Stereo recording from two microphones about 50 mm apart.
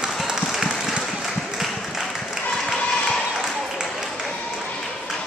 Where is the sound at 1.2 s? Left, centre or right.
Centre.